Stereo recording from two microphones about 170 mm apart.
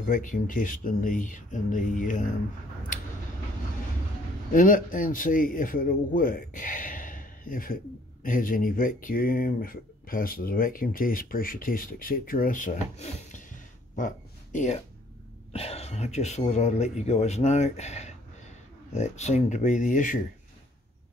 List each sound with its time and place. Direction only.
0.0 s a man's voice: 50° left (ahead or behind)
4.5 s a man's voice: 50° left (ahead or behind)